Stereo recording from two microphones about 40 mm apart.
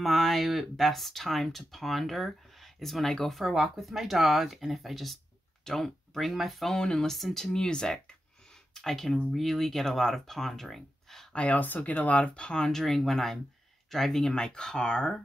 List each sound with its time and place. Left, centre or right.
0.0 s speech: centre
3.3 s speech: centre
5.6 s speech: centre
6.1 s speech: centre
6.7 s speech: centre
7.1 s speech: centre
7.5 s speech: centre
11.3 s speech: left
12.2 s speech: left
12.6 s speech: centre
14.3 s speech: left